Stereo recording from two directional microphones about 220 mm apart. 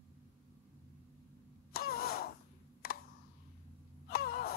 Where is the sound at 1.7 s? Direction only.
45° left (ahead or behind).